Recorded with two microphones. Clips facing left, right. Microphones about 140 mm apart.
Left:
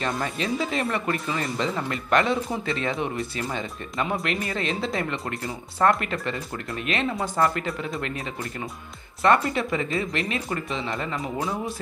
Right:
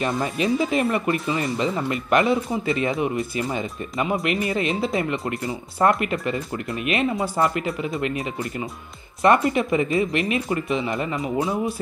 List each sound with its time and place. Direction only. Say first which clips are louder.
0.0 s speech: right 4 dB; 15° right (ahead or behind)
5.8 s speech: right 2 dB; 15° right (ahead or behind)
11.1 s speech: right 5 dB; centre (ahead or behind)